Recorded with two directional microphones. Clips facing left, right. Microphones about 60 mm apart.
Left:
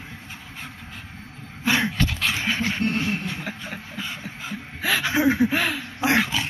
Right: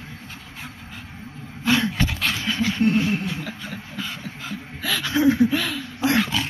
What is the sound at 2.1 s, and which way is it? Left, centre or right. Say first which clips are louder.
Dog: even; centre.